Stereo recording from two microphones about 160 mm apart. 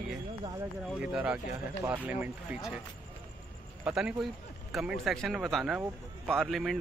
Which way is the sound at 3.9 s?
5° right (ahead or behind).